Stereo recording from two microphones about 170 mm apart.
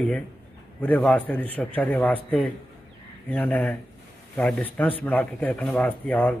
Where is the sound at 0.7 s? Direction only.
10° left (ahead or behind).